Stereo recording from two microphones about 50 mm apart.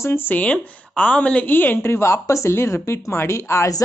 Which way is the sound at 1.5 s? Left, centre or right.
Left.